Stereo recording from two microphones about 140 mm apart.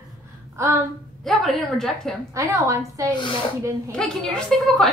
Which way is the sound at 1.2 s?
Centre (ahead or behind).